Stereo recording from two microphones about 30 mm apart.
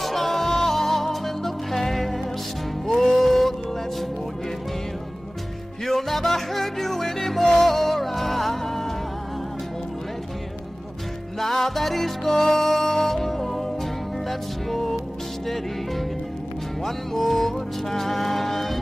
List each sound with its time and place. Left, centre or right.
0.0 s music: centre
5.9 s music: centre
11.3 s music: centre